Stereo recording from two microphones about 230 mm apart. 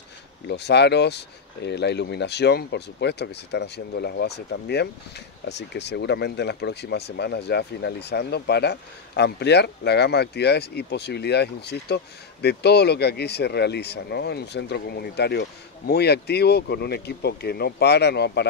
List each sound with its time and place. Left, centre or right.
0.5 s speech: left